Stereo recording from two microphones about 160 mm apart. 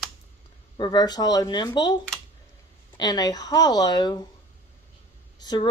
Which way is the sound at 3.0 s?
25° left (ahead or behind).